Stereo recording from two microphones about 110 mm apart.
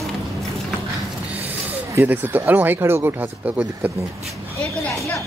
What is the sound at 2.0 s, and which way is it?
Speech, 15° right (ahead or behind).